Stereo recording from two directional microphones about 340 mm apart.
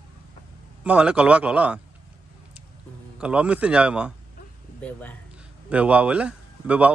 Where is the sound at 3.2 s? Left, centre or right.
Centre.